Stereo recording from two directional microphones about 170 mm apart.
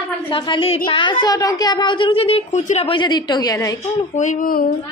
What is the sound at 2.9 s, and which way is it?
Speech, 25° left (ahead or behind).